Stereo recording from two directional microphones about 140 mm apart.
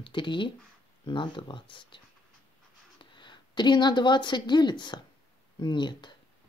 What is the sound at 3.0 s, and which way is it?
Speech, 35° left (ahead or behind).